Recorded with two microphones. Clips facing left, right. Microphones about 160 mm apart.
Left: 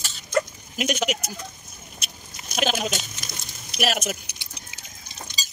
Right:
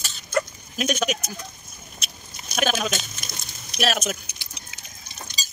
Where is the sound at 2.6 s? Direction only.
20° left (ahead or behind).